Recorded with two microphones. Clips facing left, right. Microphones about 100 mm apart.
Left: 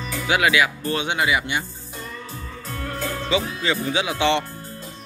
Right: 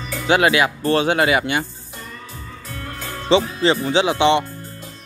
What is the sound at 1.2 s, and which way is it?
Speech, 55° right (ahead or behind).